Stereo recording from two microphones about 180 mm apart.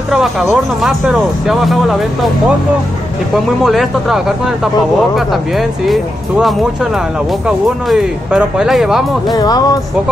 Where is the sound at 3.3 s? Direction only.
Centre (ahead or behind).